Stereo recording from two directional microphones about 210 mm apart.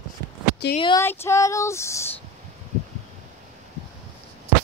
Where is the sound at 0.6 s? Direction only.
50° left (ahead or behind).